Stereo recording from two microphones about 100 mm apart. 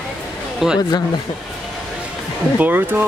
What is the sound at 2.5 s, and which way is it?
Speech, 20° right (ahead or behind).